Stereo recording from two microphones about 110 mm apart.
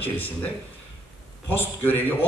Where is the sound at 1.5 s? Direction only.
15° left (ahead or behind).